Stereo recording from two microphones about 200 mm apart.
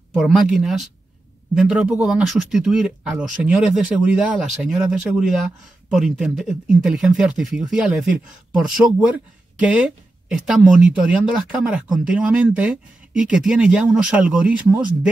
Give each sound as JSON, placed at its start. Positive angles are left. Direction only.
{"t": 0.1, "sound": "speech", "side_deg": -5}